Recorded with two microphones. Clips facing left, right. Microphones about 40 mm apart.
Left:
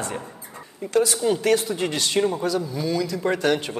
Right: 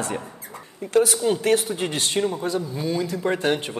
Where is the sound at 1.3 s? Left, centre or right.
Right.